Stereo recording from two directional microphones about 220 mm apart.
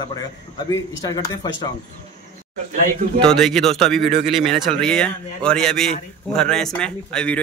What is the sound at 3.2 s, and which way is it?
A man's voice, centre (ahead or behind).